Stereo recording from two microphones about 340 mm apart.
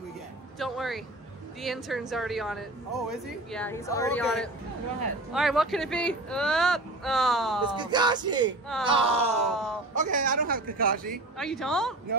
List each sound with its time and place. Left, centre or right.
0.6 s speech: centre
7.6 s speech: centre
9.5 s speech: centre
9.9 s speech: right
11.3 s speech: centre